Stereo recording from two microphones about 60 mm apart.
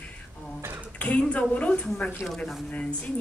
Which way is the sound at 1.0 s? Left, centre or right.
Left.